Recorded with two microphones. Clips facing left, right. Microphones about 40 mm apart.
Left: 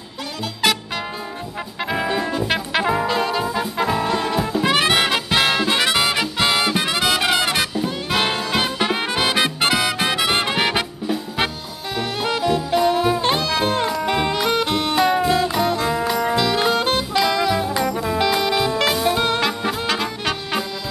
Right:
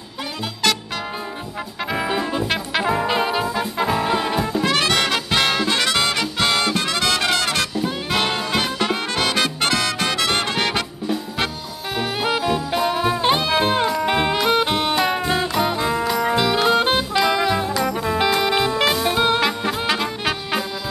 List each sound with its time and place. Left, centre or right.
2.0 s brass instrument: centre
2.4 s brass instrument: centre
3.1 s brass instrument: centre
3.4 s music: centre
4.4 s brass instrument: centre
4.6 s music: centre
12.0 s music: centre